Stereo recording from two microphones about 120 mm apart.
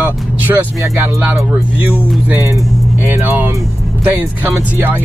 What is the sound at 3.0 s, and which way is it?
Speech, 15° right (ahead or behind).